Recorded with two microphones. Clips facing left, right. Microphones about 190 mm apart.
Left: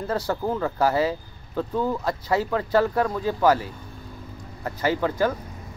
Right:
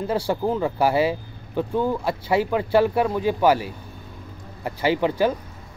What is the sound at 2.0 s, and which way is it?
Speech, 25° right (ahead or behind).